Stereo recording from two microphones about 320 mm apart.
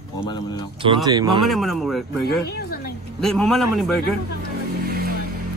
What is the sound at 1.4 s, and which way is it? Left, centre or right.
A man's voice, centre.